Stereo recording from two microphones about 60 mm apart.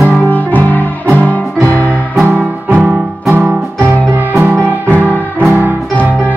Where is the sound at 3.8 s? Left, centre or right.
Right.